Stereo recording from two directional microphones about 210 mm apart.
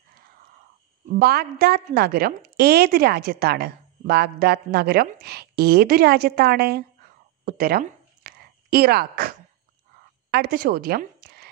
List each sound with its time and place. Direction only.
1.0 s a woman's voice: 45° right (ahead or behind)
7.4 s a sound: 45° right (ahead or behind)
10.3 s a woman's voice: 45° right (ahead or behind)